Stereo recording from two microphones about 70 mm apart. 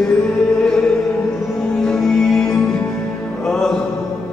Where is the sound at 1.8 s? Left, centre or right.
Centre.